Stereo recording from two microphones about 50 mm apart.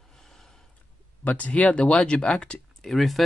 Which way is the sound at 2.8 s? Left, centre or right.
Centre.